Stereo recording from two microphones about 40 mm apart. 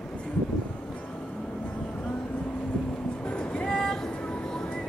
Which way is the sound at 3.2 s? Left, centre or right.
Left.